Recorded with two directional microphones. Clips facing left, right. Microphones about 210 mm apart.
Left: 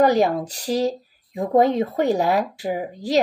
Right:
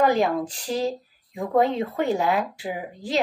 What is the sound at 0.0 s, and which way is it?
Speech, 40° left (ahead or behind).